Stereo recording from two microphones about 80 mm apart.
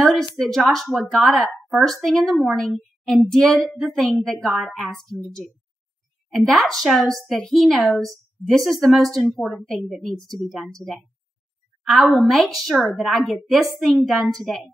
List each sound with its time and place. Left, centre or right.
0.0 s speech: centre
12.1 s speech: centre